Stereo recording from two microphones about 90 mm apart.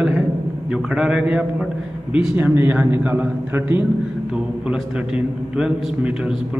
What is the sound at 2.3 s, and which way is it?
Speech, 25° right (ahead or behind).